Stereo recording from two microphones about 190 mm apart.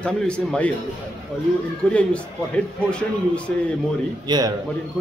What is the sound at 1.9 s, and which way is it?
A man's voice, 5° left (ahead or behind).